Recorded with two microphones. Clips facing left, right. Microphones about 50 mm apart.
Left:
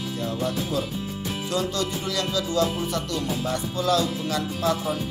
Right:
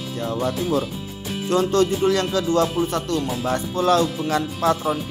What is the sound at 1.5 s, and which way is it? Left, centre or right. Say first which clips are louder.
Speech: right 9 dB; right.